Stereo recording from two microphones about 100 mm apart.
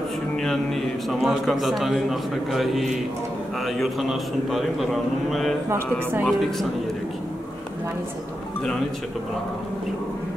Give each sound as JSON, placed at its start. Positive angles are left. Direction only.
{"t": 1.2, "sound": "a man's voice", "side_deg": 0}
{"t": 5.7, "sound": "speech", "side_deg": -25}